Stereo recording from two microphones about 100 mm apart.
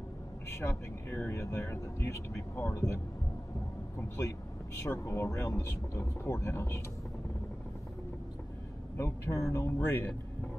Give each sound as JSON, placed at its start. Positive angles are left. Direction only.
{"t": 0.7, "sound": "speech", "side_deg": 25}
{"t": 4.8, "sound": "speech", "side_deg": 30}
{"t": 8.9, "sound": "speech", "side_deg": 30}